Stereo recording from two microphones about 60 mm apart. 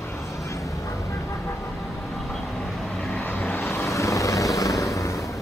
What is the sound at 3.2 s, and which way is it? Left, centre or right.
Vehicle, left.